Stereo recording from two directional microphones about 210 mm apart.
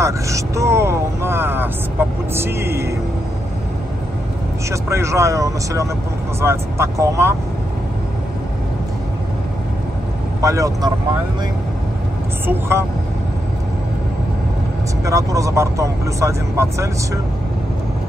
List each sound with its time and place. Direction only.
0.0 s speech: 15° right (ahead or behind)
4.6 s speech: 15° right (ahead or behind)
10.4 s speech: 15° right (ahead or behind)
12.4 s speech: 10° right (ahead or behind)
15.0 s speech: 15° right (ahead or behind)